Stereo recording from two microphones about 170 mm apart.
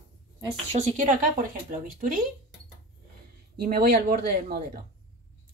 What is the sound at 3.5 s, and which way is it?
Speech, 60° right (ahead or behind).